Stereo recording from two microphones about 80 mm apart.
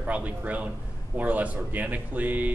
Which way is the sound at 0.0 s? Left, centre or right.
Centre.